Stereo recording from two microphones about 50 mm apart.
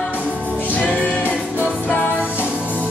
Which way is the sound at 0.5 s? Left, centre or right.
Left.